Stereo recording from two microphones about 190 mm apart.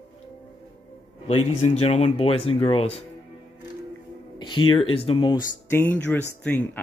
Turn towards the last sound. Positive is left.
turn(degrees=10)  # may be behind; listen again after turning